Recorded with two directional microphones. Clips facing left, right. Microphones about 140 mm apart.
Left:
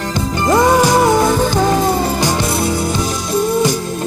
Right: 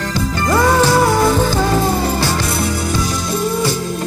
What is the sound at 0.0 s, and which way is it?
Music, 20° left (ahead or behind).